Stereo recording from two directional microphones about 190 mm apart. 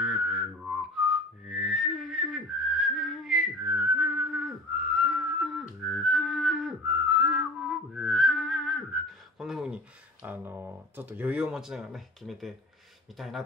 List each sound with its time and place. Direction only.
0.0 s whistling: centre (ahead or behind)
9.4 s a sound: 5° right (ahead or behind)
10.2 s speech: 10° right (ahead or behind)